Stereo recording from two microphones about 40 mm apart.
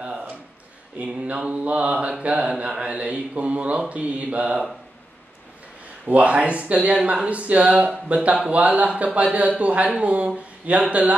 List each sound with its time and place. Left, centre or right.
0.9 s speech: right
2.7 s speech: right
6.0 s speech: right